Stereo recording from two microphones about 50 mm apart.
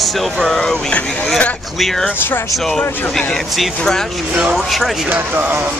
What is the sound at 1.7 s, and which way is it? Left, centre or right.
Speech, centre.